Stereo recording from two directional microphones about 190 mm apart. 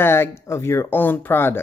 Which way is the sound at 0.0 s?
10° left (ahead or behind).